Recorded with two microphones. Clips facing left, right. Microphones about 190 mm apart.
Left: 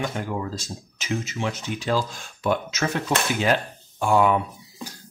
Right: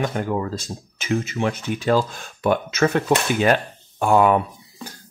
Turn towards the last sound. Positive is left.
turn(degrees=-55)  # may be behind; listen again after turning